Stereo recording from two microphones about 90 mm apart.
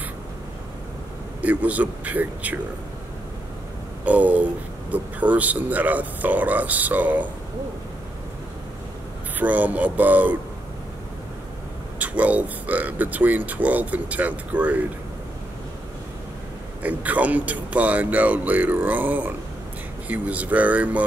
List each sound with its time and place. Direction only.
1.4 s speech: 15° right (ahead or behind)
4.0 s speech: 15° right (ahead or behind)
9.4 s speech: 20° right (ahead or behind)
12.0 s speech: 15° right (ahead or behind)
16.8 s speech: 15° right (ahead or behind)